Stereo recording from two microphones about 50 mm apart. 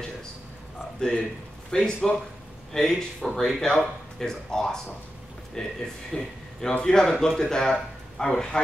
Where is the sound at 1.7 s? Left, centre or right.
Centre.